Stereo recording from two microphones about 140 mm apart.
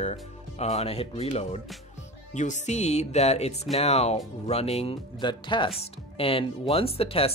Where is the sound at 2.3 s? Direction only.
60° left (ahead or behind).